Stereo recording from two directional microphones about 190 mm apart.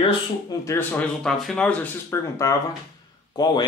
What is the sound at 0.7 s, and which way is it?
Speech, 10° left (ahead or behind).